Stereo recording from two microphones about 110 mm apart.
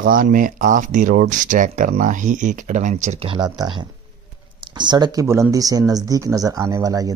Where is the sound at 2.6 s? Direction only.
90° right.